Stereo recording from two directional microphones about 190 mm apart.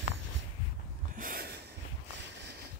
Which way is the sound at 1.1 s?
50° right (ahead or behind).